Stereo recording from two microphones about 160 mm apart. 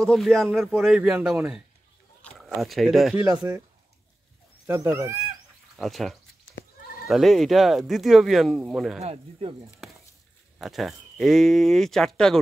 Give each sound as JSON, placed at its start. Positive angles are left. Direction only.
{"t": 0.0, "sound": "speech", "side_deg": 5}
{"t": 4.6, "sound": "speech", "side_deg": -15}
{"t": 5.8, "sound": "speech", "side_deg": 0}
{"t": 9.0, "sound": "speech", "side_deg": -40}
{"t": 10.6, "sound": "speech", "side_deg": 0}